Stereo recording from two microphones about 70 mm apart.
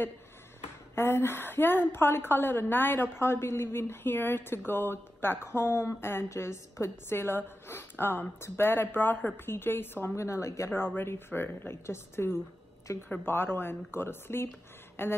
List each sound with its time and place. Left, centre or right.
0.9 s a woman's voice: left
11.0 s a woman's voice: left